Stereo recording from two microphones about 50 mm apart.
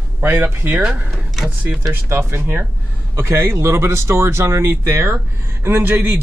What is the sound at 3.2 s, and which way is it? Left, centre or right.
A man's voice, right.